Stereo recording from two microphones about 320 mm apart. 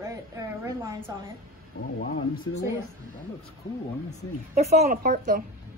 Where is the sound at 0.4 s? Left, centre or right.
Centre.